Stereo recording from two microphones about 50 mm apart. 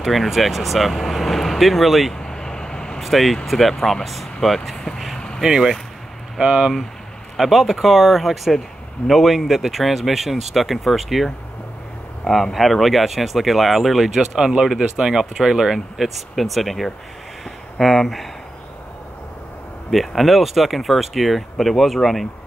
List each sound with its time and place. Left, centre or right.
0.0 s speech: centre
2.1 s vehicle: centre
3.0 s speech: centre
4.9 s vehicle: centre
5.4 s speech: centre
7.3 s speech: centre
12.5 s speech: centre
19.9 s speech: centre